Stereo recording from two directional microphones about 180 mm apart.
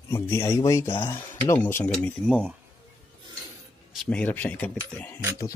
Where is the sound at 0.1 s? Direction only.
15° left (ahead or behind).